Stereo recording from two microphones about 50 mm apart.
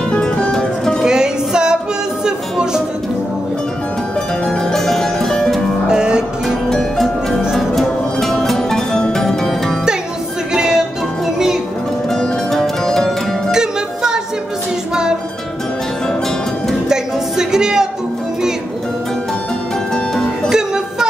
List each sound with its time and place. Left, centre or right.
0.1 s music: centre
1.0 s music: centre
4.5 s music: centre
5.9 s music: centre
6.7 s music: centre
10.5 s music: centre
12.1 s music: centre
13.5 s music: centre
16.9 s a sound: centre
20.4 s music: centre